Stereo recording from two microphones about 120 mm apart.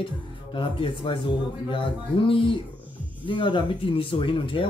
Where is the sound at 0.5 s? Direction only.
45° left (ahead or behind).